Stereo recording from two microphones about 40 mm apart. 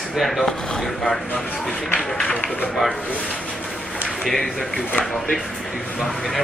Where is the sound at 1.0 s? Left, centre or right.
Left.